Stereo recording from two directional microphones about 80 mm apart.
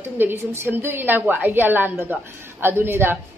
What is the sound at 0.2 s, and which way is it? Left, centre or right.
A woman's voice, right.